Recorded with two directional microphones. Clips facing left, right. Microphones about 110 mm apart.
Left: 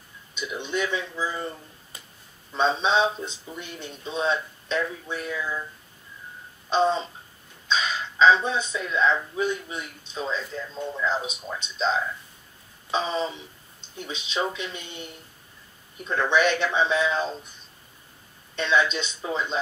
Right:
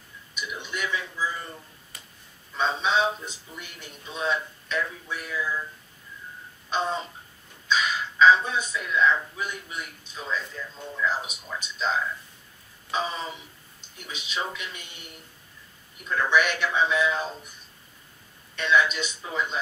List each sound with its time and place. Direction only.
0.3 s speech: 25° left (ahead or behind)
2.5 s speech: 25° left (ahead or behind)
6.7 s speech: 25° left (ahead or behind)
12.9 s speech: 25° left (ahead or behind)
18.6 s speech: 25° left (ahead or behind)